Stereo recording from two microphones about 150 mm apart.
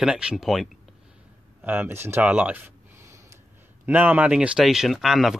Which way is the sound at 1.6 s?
15° right (ahead or behind).